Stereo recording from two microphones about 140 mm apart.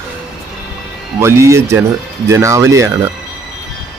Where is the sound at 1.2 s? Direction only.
20° right (ahead or behind).